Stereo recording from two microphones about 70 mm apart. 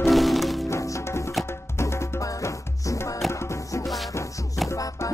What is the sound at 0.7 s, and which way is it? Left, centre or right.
Music, left.